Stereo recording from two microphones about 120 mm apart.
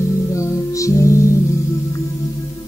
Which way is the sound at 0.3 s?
25° left (ahead or behind).